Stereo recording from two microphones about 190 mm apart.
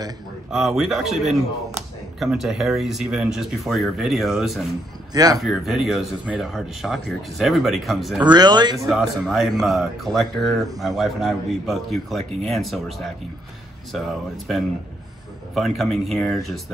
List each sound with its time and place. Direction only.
0.5 s speech: centre (ahead or behind)
5.1 s speech: 20° right (ahead or behind)
5.4 s speech: centre (ahead or behind)
8.2 s speech: 20° right (ahead or behind)
8.8 s speech: centre (ahead or behind)